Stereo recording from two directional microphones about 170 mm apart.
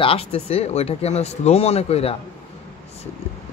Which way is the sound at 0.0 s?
35° left (ahead or behind).